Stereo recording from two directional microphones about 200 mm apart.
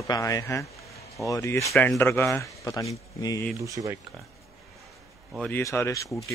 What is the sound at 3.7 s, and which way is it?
Speech, 15° right (ahead or behind).